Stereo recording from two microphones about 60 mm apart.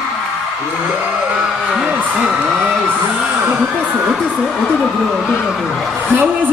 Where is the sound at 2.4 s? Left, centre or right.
Centre.